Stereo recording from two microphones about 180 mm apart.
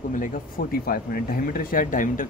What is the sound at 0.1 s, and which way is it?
Speech, 50° left (ahead or behind).